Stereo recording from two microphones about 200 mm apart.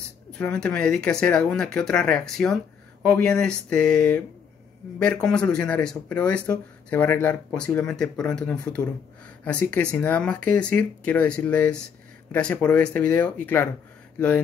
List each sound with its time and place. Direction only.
0.3 s speech: 5° left (ahead or behind)